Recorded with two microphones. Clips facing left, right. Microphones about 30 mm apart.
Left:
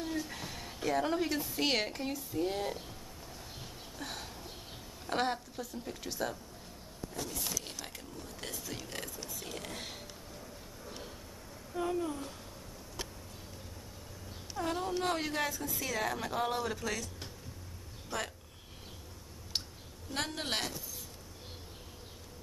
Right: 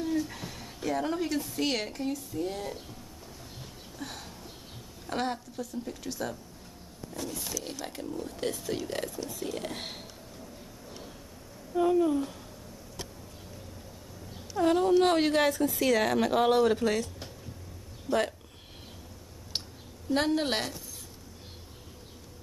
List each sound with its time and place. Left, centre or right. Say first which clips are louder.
0.0 s a woman's voice: right 6 dB; centre
4.0 s a sound: right 2 dB; centre
5.0 s a woman's voice: right 1 dB; centre
9.8 s speech: right 4 dB; right
11.7 s speech: right 10 dB; centre
14.6 s speech: right 11 dB; right
16.7 s speech: right 9 dB; right
20.1 s speech: right 9 dB; centre